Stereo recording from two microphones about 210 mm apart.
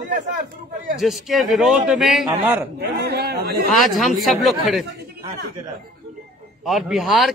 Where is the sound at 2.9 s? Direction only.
50° right (ahead or behind).